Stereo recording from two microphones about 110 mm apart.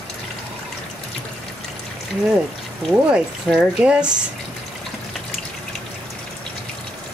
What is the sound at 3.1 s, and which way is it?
Speech, centre (ahead or behind).